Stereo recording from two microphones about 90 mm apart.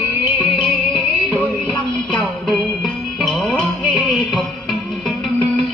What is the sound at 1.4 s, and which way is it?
Music, 15° left (ahead or behind).